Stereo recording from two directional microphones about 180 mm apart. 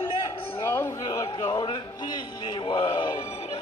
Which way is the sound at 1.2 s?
25° left (ahead or behind).